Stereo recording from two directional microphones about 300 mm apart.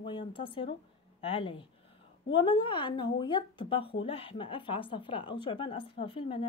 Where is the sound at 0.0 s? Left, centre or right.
Centre.